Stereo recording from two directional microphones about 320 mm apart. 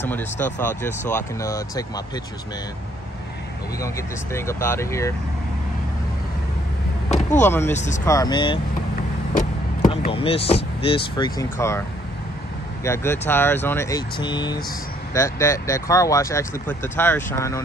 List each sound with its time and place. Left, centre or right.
0.0 s speech: centre
3.8 s speech: centre
7.3 s speech: centre
7.7 s speech: left
8.0 s speech: centre
9.8 s speech: centre
12.8 s speech: centre